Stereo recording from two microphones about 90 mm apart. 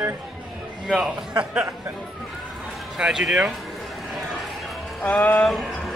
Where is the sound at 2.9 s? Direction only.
5° right (ahead or behind).